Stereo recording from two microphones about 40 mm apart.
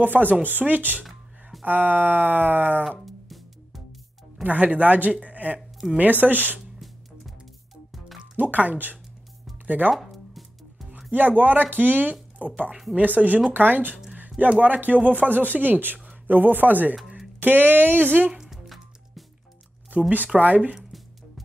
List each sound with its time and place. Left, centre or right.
0.0 s speech: right
3.3 s music: centre
4.4 s speech: right
8.4 s speech: right
9.9 s music: centre
11.1 s speech: right
18.3 s music: centre
19.9 s speech: right
20.3 s speech: right